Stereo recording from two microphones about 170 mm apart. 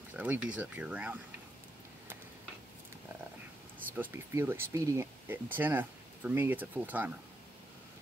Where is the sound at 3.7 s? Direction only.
10° right (ahead or behind).